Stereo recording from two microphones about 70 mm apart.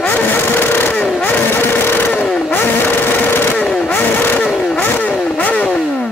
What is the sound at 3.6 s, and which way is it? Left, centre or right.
Vehicle, centre.